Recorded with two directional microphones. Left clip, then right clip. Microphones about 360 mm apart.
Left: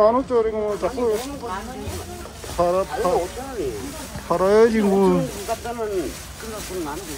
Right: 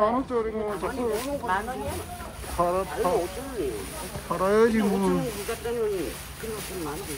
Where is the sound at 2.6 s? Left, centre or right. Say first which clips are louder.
Left 5 dB; centre.